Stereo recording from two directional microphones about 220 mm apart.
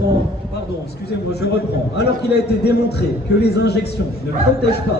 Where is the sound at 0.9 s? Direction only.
50° left (ahead or behind).